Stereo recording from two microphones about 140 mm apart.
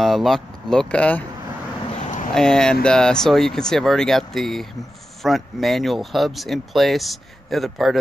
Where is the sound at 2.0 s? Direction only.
60° left (ahead or behind).